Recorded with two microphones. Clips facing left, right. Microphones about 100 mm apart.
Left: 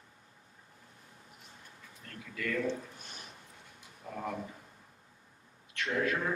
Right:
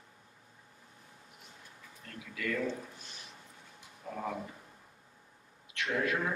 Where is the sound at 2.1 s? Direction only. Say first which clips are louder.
Even; 5° right (ahead or behind).